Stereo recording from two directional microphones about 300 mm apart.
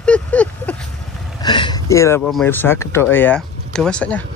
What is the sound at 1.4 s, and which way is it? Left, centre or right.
Speech, centre.